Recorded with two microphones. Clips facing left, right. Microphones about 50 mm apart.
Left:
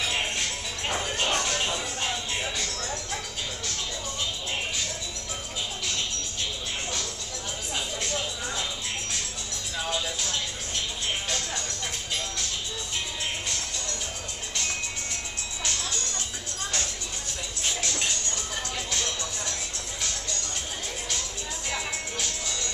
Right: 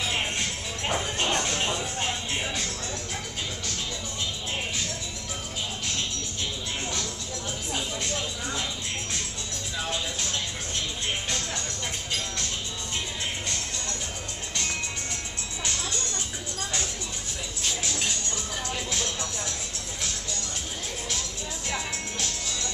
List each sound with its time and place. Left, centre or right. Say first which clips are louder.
1.1 s music: even; right
18.9 s music: even; centre
21.6 s music: even; centre